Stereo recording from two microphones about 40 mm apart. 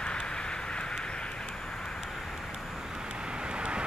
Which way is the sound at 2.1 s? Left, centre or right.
Centre.